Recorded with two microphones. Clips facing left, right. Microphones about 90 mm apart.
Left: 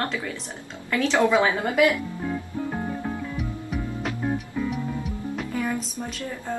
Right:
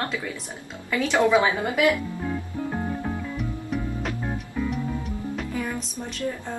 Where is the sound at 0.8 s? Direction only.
5° right (ahead or behind).